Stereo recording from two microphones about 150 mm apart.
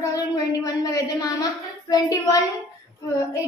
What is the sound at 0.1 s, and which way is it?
A woman's voice, 25° left (ahead or behind).